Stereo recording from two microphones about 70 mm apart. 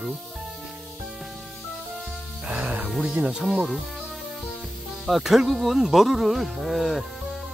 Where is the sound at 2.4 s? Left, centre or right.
Centre.